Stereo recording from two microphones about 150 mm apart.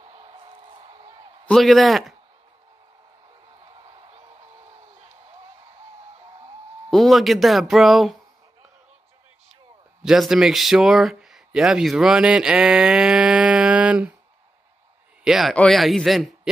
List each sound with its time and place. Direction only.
0.0 s a sound: 40° right (ahead or behind)
1.5 s speech: centre (ahead or behind)
3.6 s a sound: 35° right (ahead or behind)
6.9 s speech: centre (ahead or behind)
10.0 s speech: centre (ahead or behind)
15.2 s speech: 5° right (ahead or behind)